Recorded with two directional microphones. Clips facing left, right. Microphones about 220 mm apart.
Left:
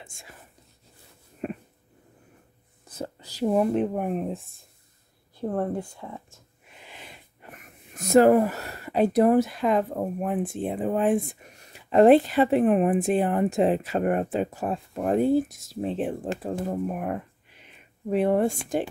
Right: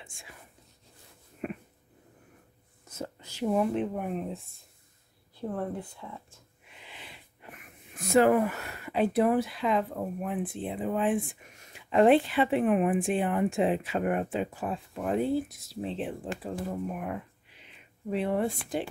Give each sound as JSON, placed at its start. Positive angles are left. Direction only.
{"t": 0.0, "sound": "speech", "side_deg": 40}
{"t": 1.4, "sound": "a sound", "side_deg": 35}
{"t": 2.9, "sound": "speech", "side_deg": 35}
{"t": 5.5, "sound": "speech", "side_deg": 45}